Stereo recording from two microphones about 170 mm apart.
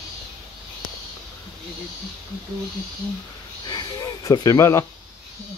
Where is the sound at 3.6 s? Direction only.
25° left (ahead or behind).